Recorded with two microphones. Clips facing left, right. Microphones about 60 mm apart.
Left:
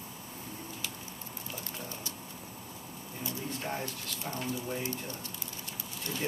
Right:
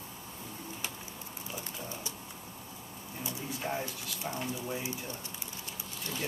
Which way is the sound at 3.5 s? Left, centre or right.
Centre.